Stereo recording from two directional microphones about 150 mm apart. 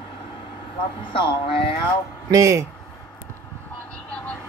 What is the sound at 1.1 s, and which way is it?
Speech, 35° left (ahead or behind).